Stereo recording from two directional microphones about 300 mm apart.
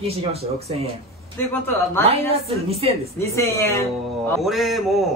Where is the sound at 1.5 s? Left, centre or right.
Centre.